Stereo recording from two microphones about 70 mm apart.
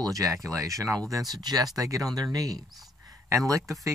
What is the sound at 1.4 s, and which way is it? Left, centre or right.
Speech, right.